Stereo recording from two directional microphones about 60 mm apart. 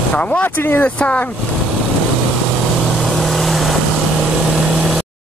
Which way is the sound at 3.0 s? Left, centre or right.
Centre.